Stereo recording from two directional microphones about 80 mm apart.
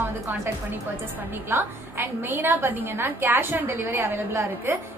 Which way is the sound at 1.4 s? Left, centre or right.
Right.